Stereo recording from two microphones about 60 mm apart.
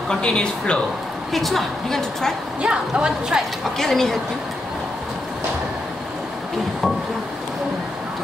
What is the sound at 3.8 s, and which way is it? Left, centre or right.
Speech, centre.